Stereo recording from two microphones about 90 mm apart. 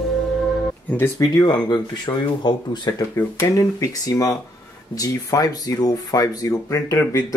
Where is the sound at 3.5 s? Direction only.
40° left (ahead or behind).